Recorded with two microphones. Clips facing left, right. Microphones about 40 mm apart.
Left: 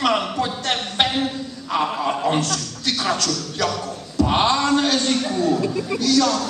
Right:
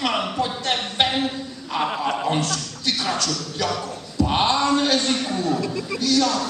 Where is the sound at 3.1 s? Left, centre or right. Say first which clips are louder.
Left 2 dB; centre.